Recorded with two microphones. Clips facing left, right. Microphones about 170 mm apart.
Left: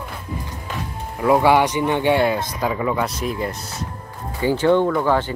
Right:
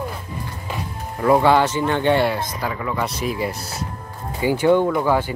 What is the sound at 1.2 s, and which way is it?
Speech, 10° left (ahead or behind).